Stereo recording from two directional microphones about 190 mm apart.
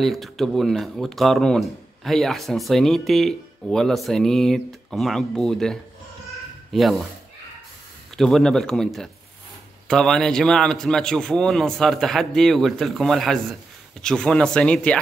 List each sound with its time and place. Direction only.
0.0 s speech: centre (ahead or behind)
8.2 s speech: centre (ahead or behind)